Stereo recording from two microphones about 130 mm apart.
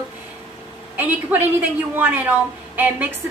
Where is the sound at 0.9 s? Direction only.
15° right (ahead or behind).